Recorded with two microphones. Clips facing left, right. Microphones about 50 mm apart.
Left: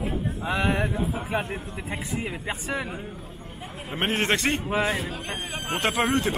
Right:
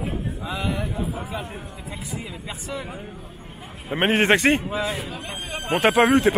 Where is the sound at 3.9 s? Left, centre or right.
Centre.